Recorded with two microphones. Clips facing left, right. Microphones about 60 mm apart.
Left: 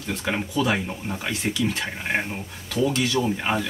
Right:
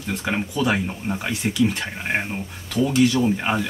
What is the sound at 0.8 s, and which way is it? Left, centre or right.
Speech, centre.